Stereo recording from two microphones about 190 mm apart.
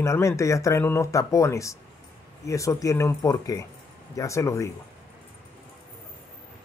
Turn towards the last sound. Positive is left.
turn(degrees=15)  # may be behind; listen again after turning